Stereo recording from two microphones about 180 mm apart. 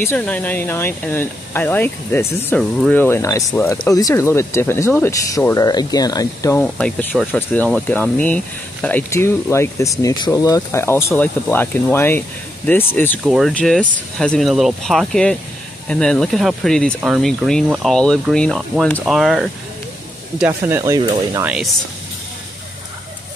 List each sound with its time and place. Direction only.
0.0 s speech: 10° left (ahead or behind)
6.6 s speech: 10° left (ahead or behind)
13.2 s speech: centre (ahead or behind)
20.3 s speech: 10° right (ahead or behind)